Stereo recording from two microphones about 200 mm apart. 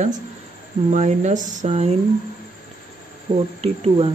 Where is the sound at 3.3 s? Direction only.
30° right (ahead or behind).